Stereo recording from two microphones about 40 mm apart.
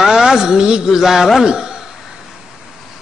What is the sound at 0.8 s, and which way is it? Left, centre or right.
Speech, centre.